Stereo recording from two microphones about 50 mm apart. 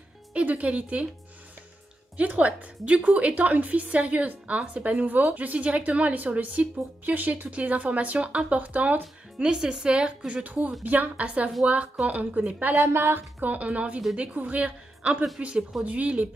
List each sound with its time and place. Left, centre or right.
0.3 s a woman's voice: right
2.1 s a woman's voice: right
9.4 s a woman's voice: centre
12.9 s a woman's voice: right